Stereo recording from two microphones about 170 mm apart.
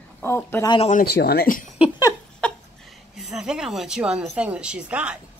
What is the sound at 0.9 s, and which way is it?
Speech, 70° left (ahead or behind).